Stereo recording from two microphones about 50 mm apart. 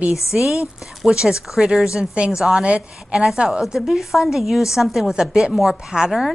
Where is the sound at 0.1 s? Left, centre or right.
Centre.